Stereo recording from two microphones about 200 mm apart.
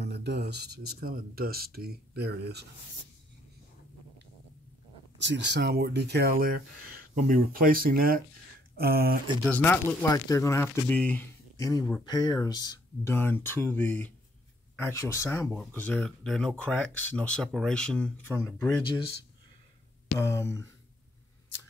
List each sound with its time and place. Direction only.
0.0 s a sound: 55° right (ahead or behind)
1.0 s speech: 50° right (ahead or behind)
5.2 s speech: 60° right (ahead or behind)
9.5 s speech: 10° left (ahead or behind)
20.2 s speech: 15° left (ahead or behind)